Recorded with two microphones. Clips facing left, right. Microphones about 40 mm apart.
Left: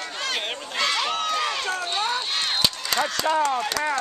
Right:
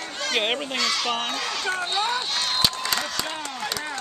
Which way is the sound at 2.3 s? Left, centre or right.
Centre.